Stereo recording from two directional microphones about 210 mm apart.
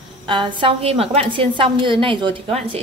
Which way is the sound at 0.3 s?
20° right (ahead or behind).